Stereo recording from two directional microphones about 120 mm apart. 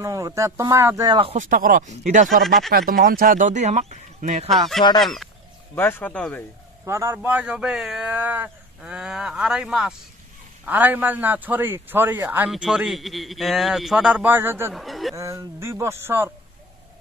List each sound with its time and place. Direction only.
0.0 s speech: 25° right (ahead or behind)
1.0 s speech: 40° right (ahead or behind)
1.3 s speech: 85° right
2.2 s speech: centre (ahead or behind)
3.3 s speech: 85° right
4.5 s speech: centre (ahead or behind)
5.8 s speech: 15° left (ahead or behind)
6.8 s a man's voice: 20° right (ahead or behind); by 8.1 s 5° right (ahead or behind)
8.1 s a man's voice: 15° right (ahead or behind)
12.4 s speech: 5° right (ahead or behind)
14.3 s speech: 20° right (ahead or behind)
14.7 s speech: centre (ahead or behind)
15.1 s speech: 25° right (ahead or behind)